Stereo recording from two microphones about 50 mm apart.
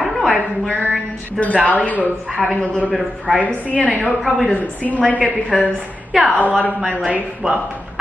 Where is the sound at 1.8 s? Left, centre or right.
Left.